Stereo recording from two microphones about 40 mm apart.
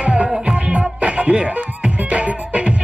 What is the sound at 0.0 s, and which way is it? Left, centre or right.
Music, right.